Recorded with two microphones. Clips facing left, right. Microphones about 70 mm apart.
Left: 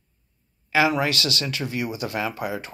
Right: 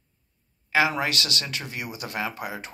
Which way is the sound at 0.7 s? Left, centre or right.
Right.